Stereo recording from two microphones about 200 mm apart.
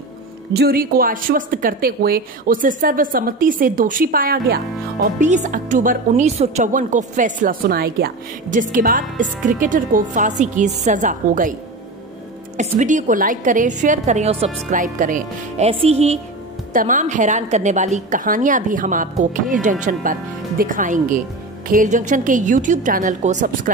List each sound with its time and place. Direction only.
0.6 s speech: 50° right (ahead or behind)
5.0 s speech: 35° right (ahead or behind)
12.5 s speech: 40° right (ahead or behind)